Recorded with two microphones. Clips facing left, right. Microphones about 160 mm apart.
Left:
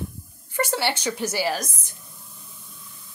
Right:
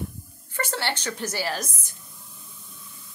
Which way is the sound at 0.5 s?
10° left (ahead or behind).